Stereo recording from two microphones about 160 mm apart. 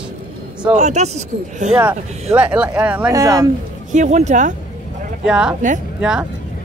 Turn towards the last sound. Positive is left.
turn(degrees=-5)  # may be behind; listen again after turning